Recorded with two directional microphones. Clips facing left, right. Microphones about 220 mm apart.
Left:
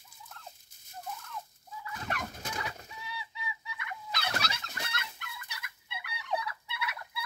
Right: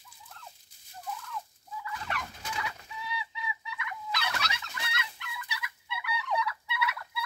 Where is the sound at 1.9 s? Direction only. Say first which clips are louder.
Left 2 dB; 45° left (ahead or behind).